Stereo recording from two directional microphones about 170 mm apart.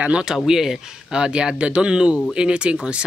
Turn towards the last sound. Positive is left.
turn(degrees=-5)  # may be behind; listen again after turning